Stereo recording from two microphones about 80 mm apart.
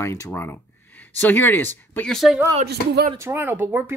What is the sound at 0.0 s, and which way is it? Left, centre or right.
Speech, left.